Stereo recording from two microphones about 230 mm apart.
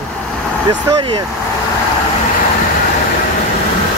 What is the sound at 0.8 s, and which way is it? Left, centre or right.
Speech, right.